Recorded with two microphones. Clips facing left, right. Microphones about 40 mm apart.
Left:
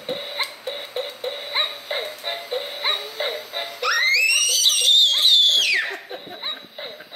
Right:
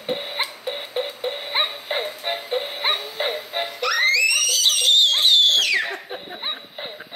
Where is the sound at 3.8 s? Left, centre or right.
Centre.